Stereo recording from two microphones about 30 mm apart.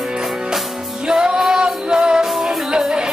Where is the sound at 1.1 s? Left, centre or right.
Right.